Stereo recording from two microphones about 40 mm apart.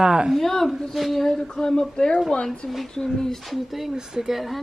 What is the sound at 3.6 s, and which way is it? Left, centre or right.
Speech, centre.